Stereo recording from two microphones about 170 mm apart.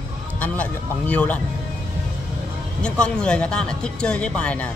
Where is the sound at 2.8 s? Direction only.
5° left (ahead or behind).